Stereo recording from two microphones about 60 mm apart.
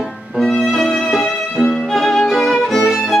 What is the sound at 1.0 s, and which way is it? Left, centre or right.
Music, centre.